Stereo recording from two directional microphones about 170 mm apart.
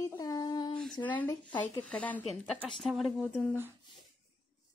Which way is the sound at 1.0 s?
10° left (ahead or behind).